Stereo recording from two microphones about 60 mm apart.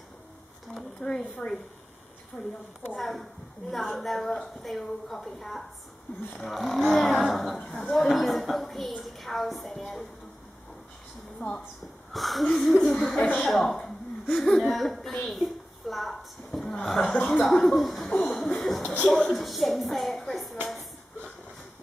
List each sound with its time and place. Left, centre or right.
0.7 s speech: centre
2.3 s a woman's voice: centre
3.0 s a woman's voice: centre
11.3 s a woman's voice: centre
15.2 s a sound: centre
16.8 s a woman's voice: centre
18.2 s a sound: centre
19.0 s music: centre